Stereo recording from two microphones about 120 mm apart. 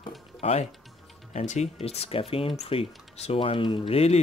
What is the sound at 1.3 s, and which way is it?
Speech, 70° left (ahead or behind).